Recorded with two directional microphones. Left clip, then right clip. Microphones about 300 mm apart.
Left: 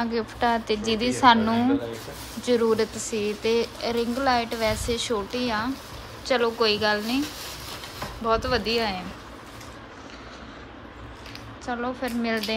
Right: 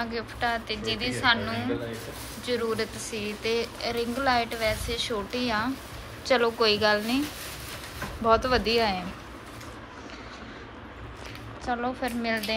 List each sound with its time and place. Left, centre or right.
0.0 s a woman's voice: centre
8.2 s speech: centre
11.6 s a woman's voice: centre